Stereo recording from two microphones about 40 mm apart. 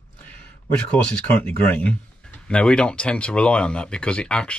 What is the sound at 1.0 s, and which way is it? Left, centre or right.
Speech, left.